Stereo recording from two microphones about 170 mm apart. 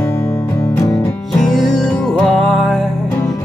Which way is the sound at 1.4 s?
Centre (ahead or behind).